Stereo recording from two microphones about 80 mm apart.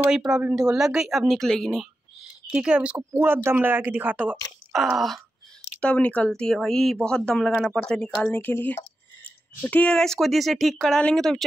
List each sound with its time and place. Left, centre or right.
0.1 s speech: centre
2.5 s speech: centre
3.1 s speech: right
4.7 s speech: centre
5.8 s speech: centre